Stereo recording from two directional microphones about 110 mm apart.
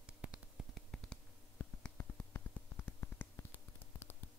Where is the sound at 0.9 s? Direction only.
10° left (ahead or behind).